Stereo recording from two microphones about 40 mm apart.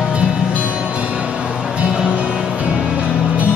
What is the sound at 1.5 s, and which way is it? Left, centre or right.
Music, centre.